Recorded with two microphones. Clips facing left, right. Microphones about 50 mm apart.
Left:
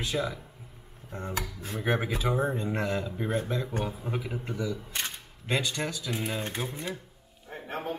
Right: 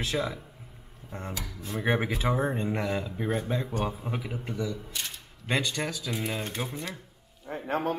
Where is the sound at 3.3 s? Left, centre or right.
Right.